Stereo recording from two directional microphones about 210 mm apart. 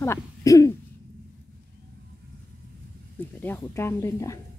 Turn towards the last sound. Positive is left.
turn(degrees=15)  # may be behind; listen again after turning